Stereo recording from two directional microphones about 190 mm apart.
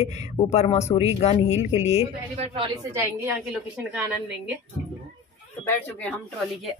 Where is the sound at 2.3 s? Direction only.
35° right (ahead or behind).